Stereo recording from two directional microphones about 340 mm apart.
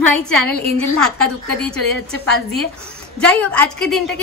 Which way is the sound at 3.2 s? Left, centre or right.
Centre.